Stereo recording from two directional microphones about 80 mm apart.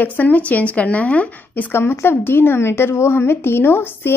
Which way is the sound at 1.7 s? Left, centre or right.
Left.